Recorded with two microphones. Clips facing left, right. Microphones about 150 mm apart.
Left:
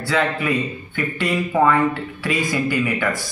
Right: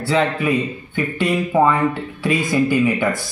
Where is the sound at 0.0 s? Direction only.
20° right (ahead or behind).